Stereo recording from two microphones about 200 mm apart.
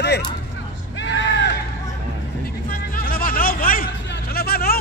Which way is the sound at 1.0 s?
60° left (ahead or behind).